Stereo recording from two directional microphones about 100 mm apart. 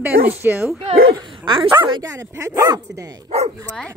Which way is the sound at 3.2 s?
90° right.